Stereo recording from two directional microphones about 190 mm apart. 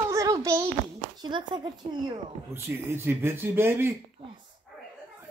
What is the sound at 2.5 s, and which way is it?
Speech, 15° right (ahead or behind).